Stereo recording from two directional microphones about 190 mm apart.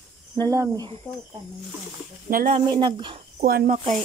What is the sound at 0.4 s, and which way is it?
Speech, 20° right (ahead or behind).